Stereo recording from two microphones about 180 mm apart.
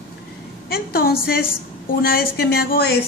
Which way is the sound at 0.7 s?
55° left (ahead or behind).